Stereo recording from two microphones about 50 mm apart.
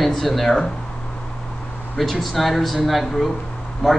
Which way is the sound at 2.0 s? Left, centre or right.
Centre.